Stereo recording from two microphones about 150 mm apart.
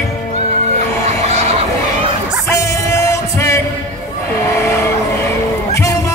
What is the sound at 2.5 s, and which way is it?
Music, 20° left (ahead or behind).